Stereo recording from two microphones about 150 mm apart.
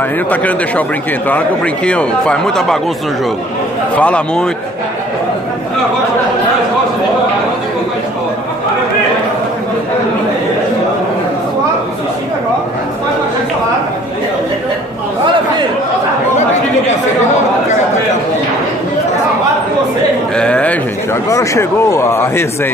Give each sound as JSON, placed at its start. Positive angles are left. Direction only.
{"t": 0.3, "sound": "speech", "side_deg": 10}
{"t": 3.9, "sound": "speech", "side_deg": 10}
{"t": 20.3, "sound": "a sound", "side_deg": 5}
{"t": 21.3, "sound": "speech", "side_deg": 20}